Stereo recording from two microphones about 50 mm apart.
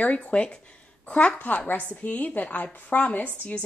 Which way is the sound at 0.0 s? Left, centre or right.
Left.